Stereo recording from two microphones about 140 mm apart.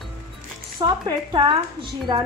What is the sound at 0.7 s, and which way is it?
A woman's voice, 30° right (ahead or behind).